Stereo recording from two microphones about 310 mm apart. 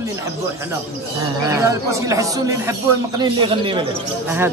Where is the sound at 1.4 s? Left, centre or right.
Centre.